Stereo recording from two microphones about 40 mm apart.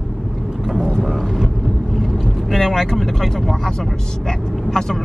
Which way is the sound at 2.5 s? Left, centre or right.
Centre.